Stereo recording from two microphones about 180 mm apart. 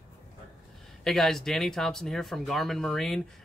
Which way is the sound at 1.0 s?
Centre (ahead or behind).